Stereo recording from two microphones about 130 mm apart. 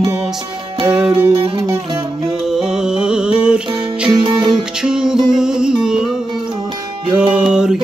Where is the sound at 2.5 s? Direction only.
5° right (ahead or behind).